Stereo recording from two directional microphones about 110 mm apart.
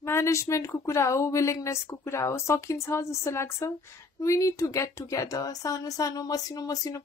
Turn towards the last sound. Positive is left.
turn(degrees=30)  # may be behind; listen again after turning